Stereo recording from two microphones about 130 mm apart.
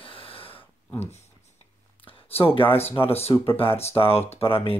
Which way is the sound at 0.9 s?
55° left (ahead or behind).